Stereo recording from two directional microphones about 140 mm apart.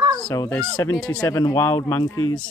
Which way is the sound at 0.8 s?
25° left (ahead or behind).